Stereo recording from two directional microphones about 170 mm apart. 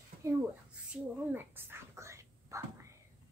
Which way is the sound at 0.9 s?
10° right (ahead or behind).